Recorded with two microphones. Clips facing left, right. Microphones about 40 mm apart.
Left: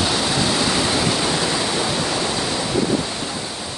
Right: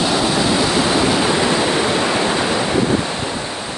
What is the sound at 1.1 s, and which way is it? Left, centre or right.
Pink noise, right.